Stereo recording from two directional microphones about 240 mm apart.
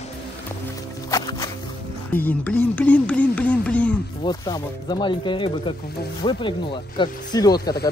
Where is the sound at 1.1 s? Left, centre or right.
Centre.